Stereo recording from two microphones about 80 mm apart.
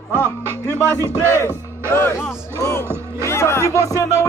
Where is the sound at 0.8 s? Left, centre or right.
Right.